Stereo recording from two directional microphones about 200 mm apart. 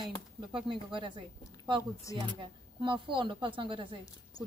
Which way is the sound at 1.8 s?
15° left (ahead or behind).